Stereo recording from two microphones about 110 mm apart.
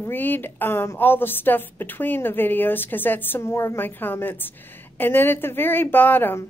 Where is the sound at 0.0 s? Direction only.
20° left (ahead or behind).